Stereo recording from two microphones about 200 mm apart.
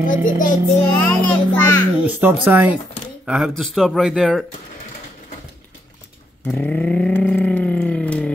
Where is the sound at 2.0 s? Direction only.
10° right (ahead or behind).